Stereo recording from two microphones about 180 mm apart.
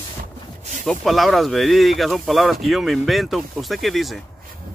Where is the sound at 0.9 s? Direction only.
Centre (ahead or behind).